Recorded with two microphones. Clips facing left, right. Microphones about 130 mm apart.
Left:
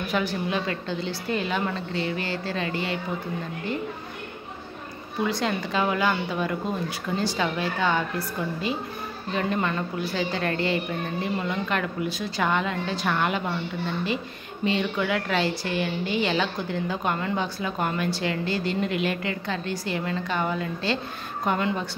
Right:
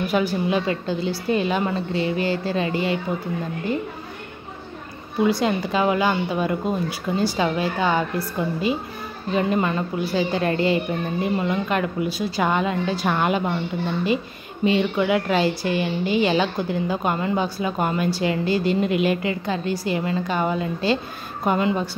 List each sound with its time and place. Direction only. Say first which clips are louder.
0.1 s a woman's voice: right 4 dB; 15° right (ahead or behind)
5.2 s a woman's voice: right 6 dB; 15° right (ahead or behind)
9.3 s a woman's voice: right 5 dB; 15° right (ahead or behind)
14.6 s a woman's voice: right 5 dB; 15° right (ahead or behind)